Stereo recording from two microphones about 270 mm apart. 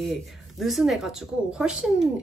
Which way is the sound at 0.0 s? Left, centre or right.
Centre.